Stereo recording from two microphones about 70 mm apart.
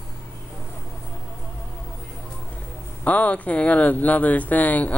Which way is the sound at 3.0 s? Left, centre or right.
Left.